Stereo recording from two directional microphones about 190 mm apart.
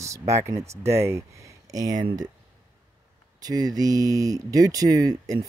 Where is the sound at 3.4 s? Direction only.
20° right (ahead or behind).